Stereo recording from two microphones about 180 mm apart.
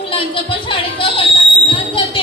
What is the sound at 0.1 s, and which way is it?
Speech, 30° left (ahead or behind).